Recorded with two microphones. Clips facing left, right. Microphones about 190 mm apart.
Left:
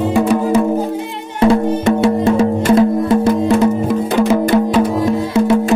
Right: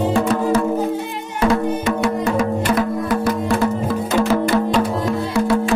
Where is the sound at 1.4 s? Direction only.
30° left (ahead or behind).